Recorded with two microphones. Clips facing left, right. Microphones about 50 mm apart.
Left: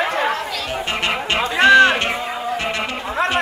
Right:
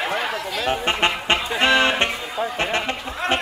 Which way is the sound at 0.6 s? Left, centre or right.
Right.